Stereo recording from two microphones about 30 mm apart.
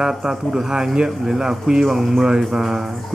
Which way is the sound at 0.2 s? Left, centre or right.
Centre.